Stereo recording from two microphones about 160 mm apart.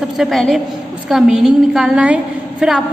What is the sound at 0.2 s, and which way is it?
A woman's voice, centre (ahead or behind).